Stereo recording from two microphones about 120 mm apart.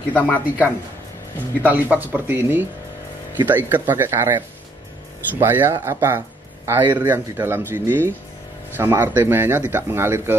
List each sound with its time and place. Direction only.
0.1 s speech: 15° left (ahead or behind)
1.6 s speech: 15° right (ahead or behind)